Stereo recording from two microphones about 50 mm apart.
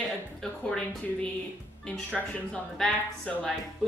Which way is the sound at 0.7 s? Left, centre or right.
Centre.